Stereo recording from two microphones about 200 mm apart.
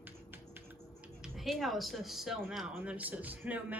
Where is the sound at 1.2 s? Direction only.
Centre (ahead or behind).